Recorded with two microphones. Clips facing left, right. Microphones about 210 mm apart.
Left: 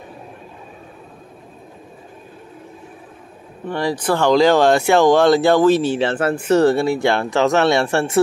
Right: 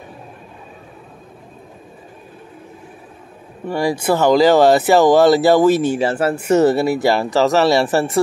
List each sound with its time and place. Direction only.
3.6 s speech: 10° right (ahead or behind)